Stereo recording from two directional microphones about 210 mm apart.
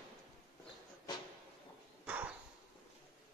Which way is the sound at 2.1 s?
5° right (ahead or behind).